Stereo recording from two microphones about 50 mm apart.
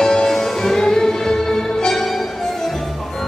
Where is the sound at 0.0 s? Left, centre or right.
Centre.